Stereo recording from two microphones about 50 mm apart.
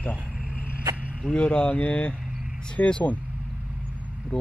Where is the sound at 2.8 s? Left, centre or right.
Left.